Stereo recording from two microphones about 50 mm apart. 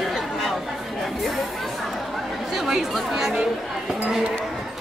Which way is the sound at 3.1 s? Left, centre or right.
Centre.